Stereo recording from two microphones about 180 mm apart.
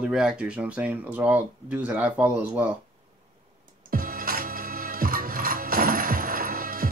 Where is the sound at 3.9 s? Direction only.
50° right (ahead or behind).